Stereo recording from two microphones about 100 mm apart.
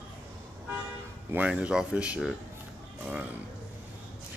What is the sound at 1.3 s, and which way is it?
Speech, 15° right (ahead or behind).